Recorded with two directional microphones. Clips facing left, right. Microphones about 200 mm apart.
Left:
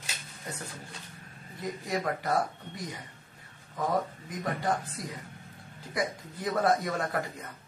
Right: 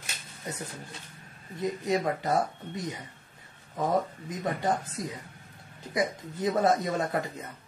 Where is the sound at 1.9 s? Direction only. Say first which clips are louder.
Right 2 dB; 25° right (ahead or behind).